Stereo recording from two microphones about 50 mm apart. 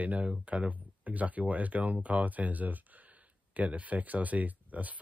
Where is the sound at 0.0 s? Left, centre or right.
Right.